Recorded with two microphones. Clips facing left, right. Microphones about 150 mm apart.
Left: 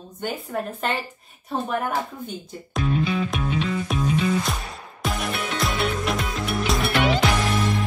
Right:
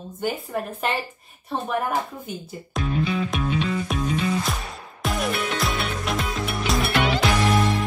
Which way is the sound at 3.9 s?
Centre (ahead or behind).